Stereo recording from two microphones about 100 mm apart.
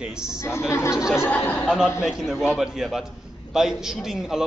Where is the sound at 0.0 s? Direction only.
10° right (ahead or behind).